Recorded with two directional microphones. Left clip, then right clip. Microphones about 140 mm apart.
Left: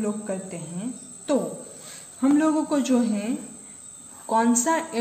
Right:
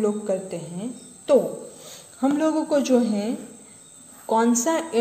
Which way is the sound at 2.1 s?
20° right (ahead or behind).